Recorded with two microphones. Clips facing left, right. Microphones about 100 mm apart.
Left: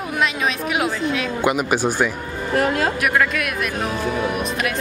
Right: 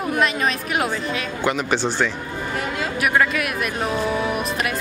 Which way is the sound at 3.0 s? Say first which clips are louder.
Even; centre (ahead or behind).